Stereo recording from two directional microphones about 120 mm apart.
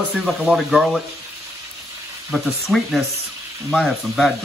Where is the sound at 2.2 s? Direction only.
Centre (ahead or behind).